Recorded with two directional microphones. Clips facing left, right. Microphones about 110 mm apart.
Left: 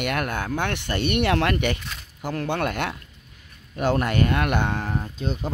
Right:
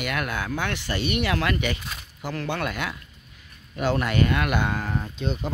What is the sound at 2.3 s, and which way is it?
Speech, 45° left (ahead or behind).